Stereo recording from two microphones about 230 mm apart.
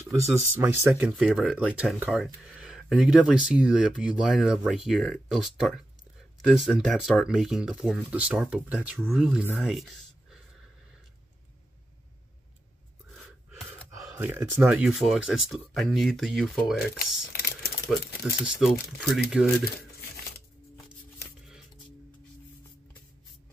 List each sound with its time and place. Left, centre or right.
0.1 s speech: centre
14.1 s speech: centre
17.3 s typing: left
18.2 s speech: centre
19.6 s crumpling: left